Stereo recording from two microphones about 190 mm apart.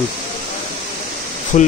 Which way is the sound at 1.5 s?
45° left (ahead or behind).